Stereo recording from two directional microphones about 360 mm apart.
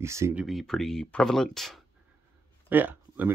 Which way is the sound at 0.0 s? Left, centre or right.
Centre.